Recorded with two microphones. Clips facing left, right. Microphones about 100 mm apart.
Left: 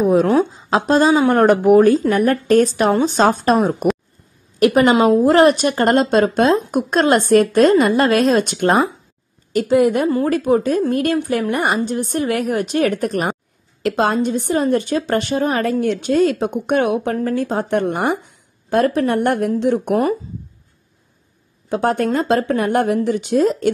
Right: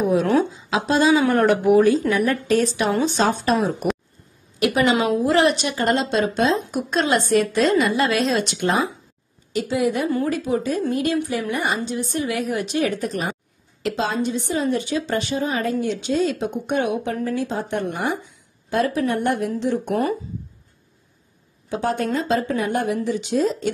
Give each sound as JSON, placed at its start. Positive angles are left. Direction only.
{"t": 0.0, "sound": "speech", "side_deg": 40}
{"t": 10.0, "sound": "speech", "side_deg": 35}
{"t": 10.3, "sound": "a woman's voice", "side_deg": 55}
{"t": 21.6, "sound": "a woman's voice", "side_deg": 50}